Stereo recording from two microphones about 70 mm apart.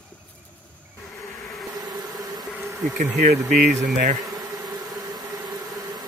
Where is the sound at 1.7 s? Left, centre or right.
Right.